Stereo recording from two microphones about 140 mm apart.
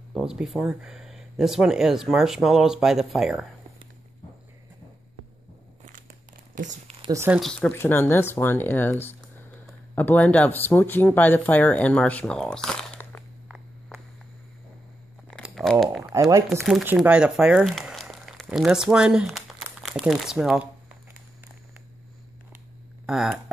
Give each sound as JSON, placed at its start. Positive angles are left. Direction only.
{"t": 0.1, "sound": "speech", "side_deg": -5}
{"t": 6.5, "sound": "speech", "side_deg": -65}
{"t": 7.2, "sound": "speech", "side_deg": 0}
{"t": 7.7, "sound": "speech", "side_deg": 15}
{"t": 13.5, "sound": "a sound", "side_deg": 0}
{"t": 15.5, "sound": "crumpling", "side_deg": 5}
{"t": 16.8, "sound": "speech", "side_deg": -10}
{"t": 23.0, "sound": "speech", "side_deg": -5}